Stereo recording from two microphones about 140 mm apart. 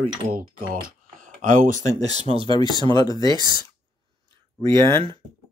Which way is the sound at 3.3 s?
30° right (ahead or behind).